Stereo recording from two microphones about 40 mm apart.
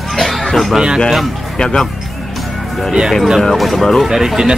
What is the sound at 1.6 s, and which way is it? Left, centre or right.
Speech, centre.